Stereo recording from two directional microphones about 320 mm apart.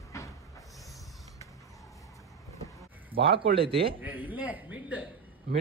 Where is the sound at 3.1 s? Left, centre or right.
Centre.